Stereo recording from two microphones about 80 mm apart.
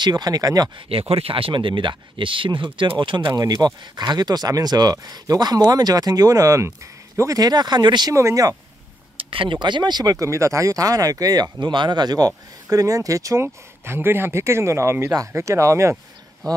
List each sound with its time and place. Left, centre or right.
0.0 s speech: right
1.3 s speech: right
3.3 s speech: right
8.1 s speech: right
9.1 s speech: right
10.1 s speech: right
11.6 s speech: right
12.6 s speech: right
16.4 s speech: right